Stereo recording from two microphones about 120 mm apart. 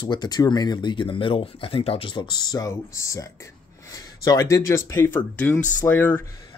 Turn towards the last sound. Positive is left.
turn(degrees=15)  # may be behind; listen again after turning